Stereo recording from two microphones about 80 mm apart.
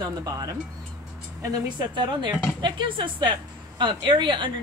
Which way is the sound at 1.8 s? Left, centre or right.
Right.